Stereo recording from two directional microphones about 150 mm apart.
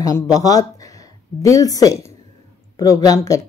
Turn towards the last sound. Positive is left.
turn(degrees=25)  # may be behind; listen again after turning